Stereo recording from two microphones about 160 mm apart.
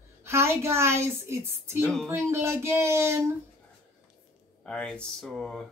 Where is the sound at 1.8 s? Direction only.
5° left (ahead or behind).